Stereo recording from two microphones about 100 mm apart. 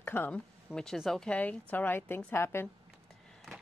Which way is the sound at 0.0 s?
20° left (ahead or behind).